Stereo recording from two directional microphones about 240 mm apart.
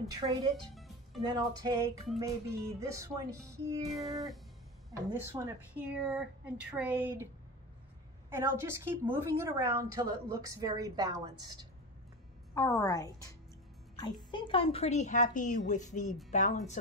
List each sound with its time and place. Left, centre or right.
0.1 s a woman's voice: centre
0.7 s music: centre
1.2 s a woman's voice: centre
3.8 s a sound: centre
5.1 s a woman's voice: centre
8.3 s a woman's voice: centre
12.5 s a woman's voice: centre
14.3 s a woman's voice: left